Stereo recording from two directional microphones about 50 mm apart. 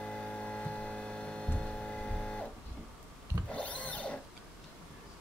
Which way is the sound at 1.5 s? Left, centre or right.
Centre.